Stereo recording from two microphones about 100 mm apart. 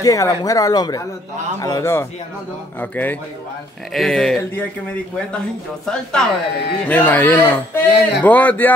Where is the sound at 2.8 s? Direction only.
20° left (ahead or behind).